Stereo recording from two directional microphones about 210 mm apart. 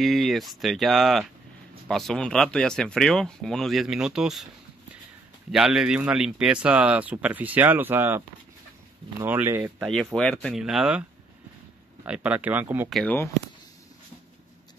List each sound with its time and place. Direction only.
0.0 s speech: centre (ahead or behind)
5.5 s speech: centre (ahead or behind)
9.2 s speech: 10° right (ahead or behind)
10.1 s speech: 5° left (ahead or behind)
12.9 s speech: 5° left (ahead or behind)